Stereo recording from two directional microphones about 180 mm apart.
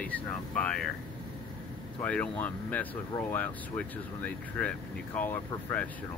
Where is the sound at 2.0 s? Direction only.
10° left (ahead or behind).